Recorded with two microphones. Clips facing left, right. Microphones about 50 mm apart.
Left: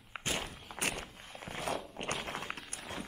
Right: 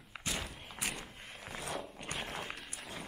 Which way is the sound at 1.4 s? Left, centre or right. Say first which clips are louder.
Left 4 dB; left.